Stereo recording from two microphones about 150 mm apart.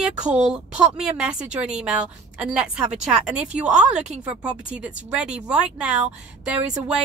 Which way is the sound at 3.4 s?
50° right (ahead or behind).